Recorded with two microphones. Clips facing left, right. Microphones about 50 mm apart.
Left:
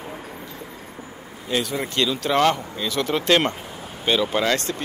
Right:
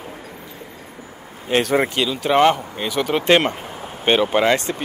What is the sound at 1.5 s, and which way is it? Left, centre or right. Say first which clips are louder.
Speech: right 7 dB; right.